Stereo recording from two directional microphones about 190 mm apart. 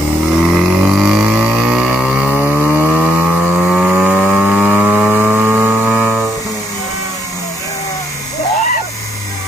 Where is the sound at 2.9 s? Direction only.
10° right (ahead or behind).